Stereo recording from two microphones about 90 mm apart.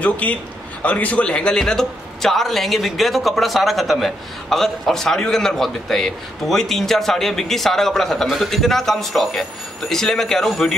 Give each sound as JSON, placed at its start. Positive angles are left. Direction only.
{"t": 0.0, "sound": "a man's voice", "side_deg": 15}